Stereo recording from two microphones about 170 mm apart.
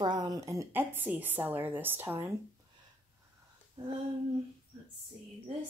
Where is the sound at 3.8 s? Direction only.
30° right (ahead or behind).